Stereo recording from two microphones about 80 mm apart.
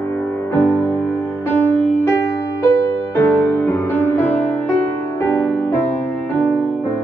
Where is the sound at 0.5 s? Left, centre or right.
Left.